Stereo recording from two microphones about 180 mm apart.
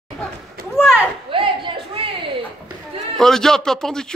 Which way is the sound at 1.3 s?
30° right (ahead or behind).